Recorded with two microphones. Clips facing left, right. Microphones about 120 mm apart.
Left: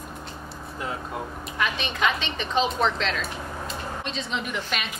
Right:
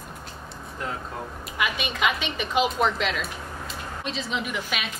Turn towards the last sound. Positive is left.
turn(degrees=-5)  # may be behind; listen again after turning